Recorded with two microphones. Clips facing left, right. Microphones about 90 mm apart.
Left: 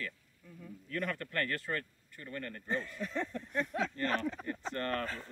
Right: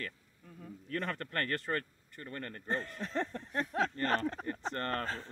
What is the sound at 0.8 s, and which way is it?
Speech, 35° right (ahead or behind).